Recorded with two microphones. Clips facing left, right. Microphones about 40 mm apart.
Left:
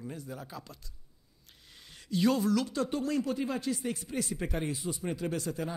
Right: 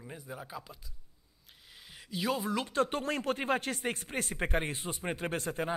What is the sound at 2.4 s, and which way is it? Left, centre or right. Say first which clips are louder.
Speech: left 1 dB; right.